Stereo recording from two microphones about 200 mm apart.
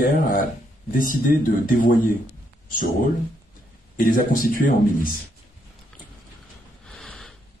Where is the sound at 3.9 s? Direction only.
45° left (ahead or behind).